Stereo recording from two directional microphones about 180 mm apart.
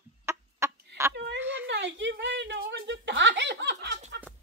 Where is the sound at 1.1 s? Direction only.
70° right (ahead or behind).